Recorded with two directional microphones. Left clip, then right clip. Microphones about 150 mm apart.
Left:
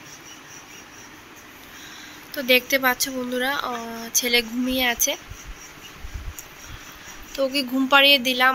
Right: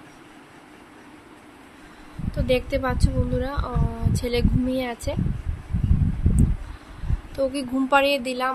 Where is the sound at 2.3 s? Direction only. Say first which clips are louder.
Left 4 dB; 10° right (ahead or behind).